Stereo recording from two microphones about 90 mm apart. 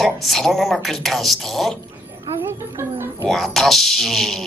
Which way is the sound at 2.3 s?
25° right (ahead or behind).